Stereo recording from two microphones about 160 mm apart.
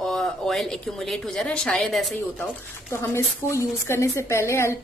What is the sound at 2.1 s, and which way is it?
Speech, 15° left (ahead or behind).